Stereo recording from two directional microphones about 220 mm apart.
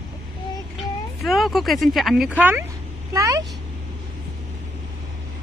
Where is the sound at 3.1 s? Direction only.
15° right (ahead or behind).